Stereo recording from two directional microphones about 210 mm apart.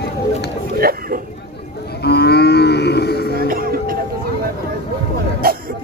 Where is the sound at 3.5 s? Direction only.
45° right (ahead or behind).